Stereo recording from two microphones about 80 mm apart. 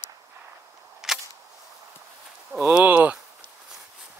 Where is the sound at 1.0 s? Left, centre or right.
Centre.